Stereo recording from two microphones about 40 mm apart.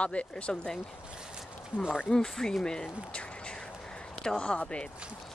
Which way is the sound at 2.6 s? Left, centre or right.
Left.